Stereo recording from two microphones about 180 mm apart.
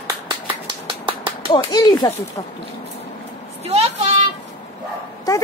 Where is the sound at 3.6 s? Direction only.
35° right (ahead or behind).